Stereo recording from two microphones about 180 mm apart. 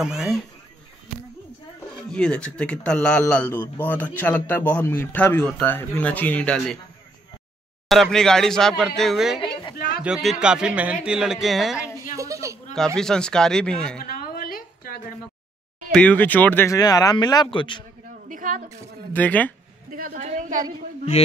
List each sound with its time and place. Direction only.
0.0 s a man's voice: centre (ahead or behind)
2.0 s a man's voice: 5° left (ahead or behind)
7.9 s a man's voice: centre (ahead or behind)
9.8 s speech: 60° left (ahead or behind)
10.0 s a man's voice: 5° right (ahead or behind)
12.2 s a sound: 15° right (ahead or behind)
12.7 s a man's voice: 5° left (ahead or behind)
14.0 s a sound: 50° left (ahead or behind)
15.9 s speech: 5° left (ahead or behind); by 17.8 s 25° left (ahead or behind)
18.3 s a woman's voice: 45° right (ahead or behind)
19.1 s a man's voice: 10° left (ahead or behind)
19.9 s a man's voice: 50° right (ahead or behind)